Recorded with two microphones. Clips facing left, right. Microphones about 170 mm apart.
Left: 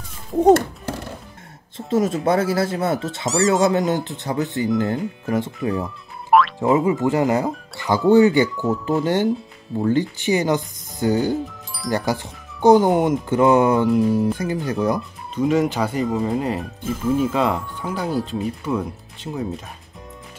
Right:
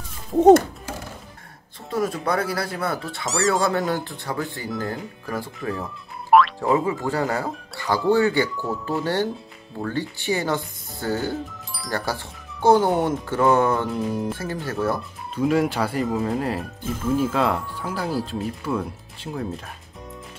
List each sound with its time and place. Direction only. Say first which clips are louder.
1.9 s speech: left 5 dB; 25° left (ahead or behind)
3.3 s speech: left 4 dB; centre (ahead or behind)
3.6 s speech: left 4 dB; 20° left (ahead or behind)
15.3 s speech: left 2 dB; 5° right (ahead or behind)